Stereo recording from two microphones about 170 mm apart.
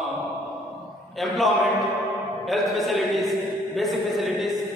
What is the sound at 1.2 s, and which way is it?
Speech, centre (ahead or behind).